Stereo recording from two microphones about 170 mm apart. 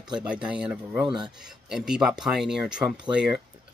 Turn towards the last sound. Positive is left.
turn(degrees=-5)  # may be behind; listen again after turning